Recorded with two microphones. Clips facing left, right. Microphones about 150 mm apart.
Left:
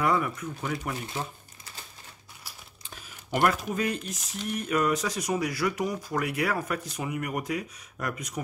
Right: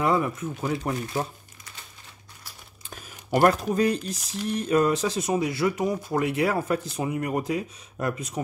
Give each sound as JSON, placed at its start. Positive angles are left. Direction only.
{"t": 0.0, "sound": "speech", "side_deg": -25}
{"t": 2.9, "sound": "speech", "side_deg": -40}